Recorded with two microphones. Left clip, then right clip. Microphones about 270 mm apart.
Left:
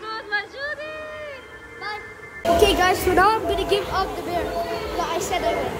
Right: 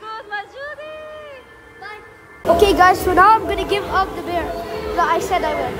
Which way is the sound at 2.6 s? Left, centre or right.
Centre.